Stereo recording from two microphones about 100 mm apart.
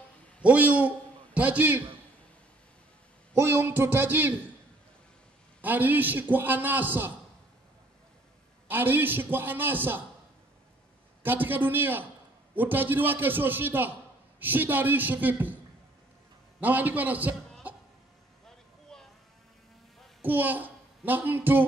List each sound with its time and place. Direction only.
0.4 s a man's voice: 15° right (ahead or behind)
3.3 s a man's voice: 25° right (ahead or behind)
5.6 s a man's voice: 15° right (ahead or behind)
8.6 s a man's voice: 20° right (ahead or behind)
11.2 s a man's voice: 20° right (ahead or behind)
17.6 s cough: 15° right (ahead or behind)
18.9 s sheep: 5° left (ahead or behind)
20.2 s a sound: 15° right (ahead or behind)